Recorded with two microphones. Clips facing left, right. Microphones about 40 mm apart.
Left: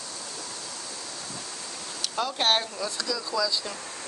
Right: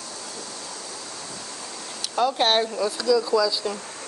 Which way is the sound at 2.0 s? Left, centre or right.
Centre.